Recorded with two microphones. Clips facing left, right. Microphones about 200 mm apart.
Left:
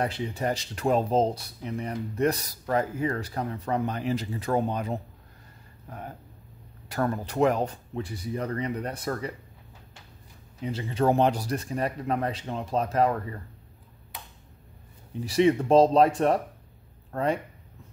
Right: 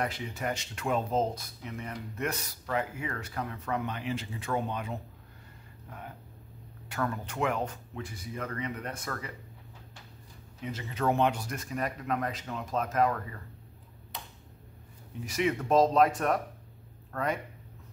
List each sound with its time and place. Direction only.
0.0 s speech: 30° left (ahead or behind)
5.9 s a sound: 40° left (ahead or behind)
6.9 s speech: 35° left (ahead or behind)
10.6 s speech: 30° left (ahead or behind)
15.2 s speech: 30° left (ahead or behind)